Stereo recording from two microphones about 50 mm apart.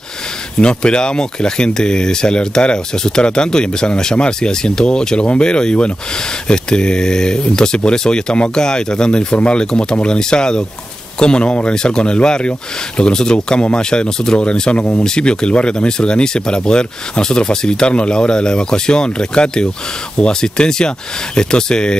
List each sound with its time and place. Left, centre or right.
0.6 s speech: centre